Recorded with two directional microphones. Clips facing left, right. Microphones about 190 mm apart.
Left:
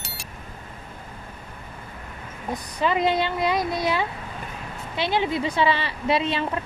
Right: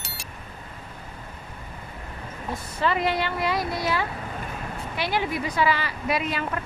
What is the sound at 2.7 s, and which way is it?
A woman's voice, 20° left (ahead or behind).